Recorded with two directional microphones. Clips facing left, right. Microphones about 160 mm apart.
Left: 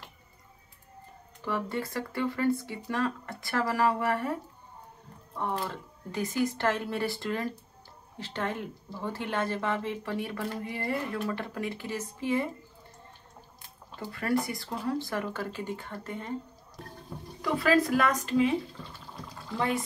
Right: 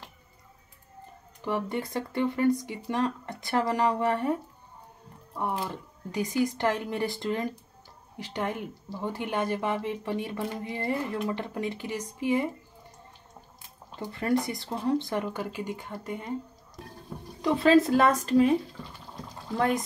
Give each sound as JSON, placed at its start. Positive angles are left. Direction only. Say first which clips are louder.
{"t": 1.4, "sound": "speech", "louder": "right 2 dB", "side_deg": -20}
{"t": 5.4, "sound": "speech", "louder": "right 1 dB", "side_deg": -15}
{"t": 13.9, "sound": "speech", "louder": "right 2 dB", "side_deg": -20}
{"t": 17.4, "sound": "speech", "louder": "right 4 dB", "side_deg": -25}